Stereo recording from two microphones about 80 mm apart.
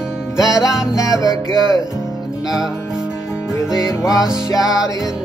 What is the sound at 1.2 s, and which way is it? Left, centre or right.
Music, left.